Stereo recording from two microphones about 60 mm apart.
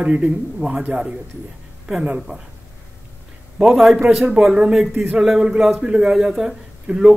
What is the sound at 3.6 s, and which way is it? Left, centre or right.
Speech, centre.